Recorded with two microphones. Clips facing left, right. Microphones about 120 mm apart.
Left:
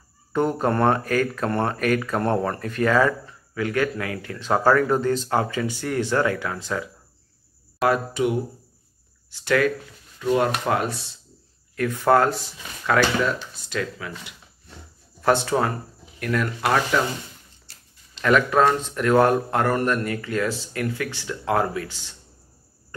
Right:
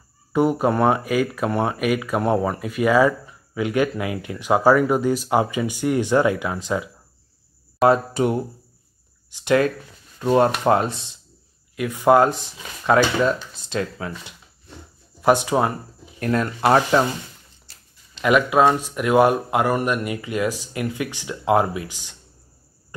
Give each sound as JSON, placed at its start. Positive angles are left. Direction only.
{"t": 0.3, "sound": "speech", "side_deg": -10}
{"t": 7.8, "sound": "speech", "side_deg": -35}
{"t": 9.3, "sound": "speech", "side_deg": -20}
{"t": 10.1, "sound": "speech", "side_deg": -35}
{"t": 15.2, "sound": "speech", "side_deg": -15}
{"t": 16.2, "sound": "speech", "side_deg": -30}
{"t": 18.2, "sound": "speech", "side_deg": -10}